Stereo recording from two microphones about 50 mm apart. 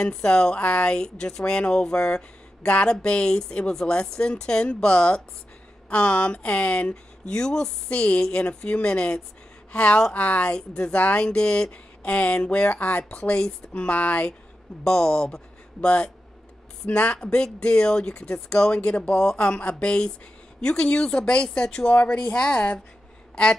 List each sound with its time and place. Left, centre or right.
0.0 s speech: centre
13.9 s speech: left
14.9 s speech: centre
16.9 s speech: left
21.8 s speech: left